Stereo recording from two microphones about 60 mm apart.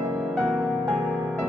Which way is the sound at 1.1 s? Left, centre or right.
Right.